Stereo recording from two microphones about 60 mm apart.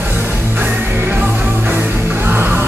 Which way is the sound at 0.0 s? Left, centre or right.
Right.